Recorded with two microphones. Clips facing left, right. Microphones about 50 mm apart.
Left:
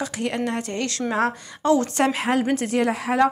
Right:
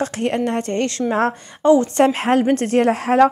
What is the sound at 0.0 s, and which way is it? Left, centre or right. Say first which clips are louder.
A woman's voice: right 5 dB; right.